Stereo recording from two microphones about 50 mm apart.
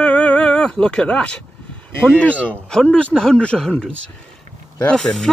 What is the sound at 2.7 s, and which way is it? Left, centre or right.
Speech, centre.